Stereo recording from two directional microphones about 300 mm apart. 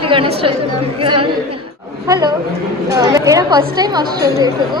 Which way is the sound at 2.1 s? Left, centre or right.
Centre.